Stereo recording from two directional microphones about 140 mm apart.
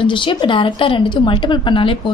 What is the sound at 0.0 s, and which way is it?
A woman's voice, 35° left (ahead or behind).